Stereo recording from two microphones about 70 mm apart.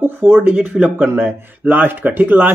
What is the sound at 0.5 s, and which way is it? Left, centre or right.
Speech, centre.